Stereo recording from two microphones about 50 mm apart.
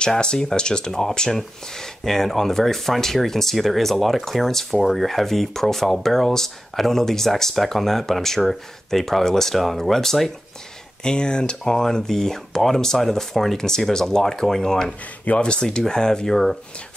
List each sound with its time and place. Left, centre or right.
0.0 s speech: centre
11.1 s speech: centre
15.2 s speech: centre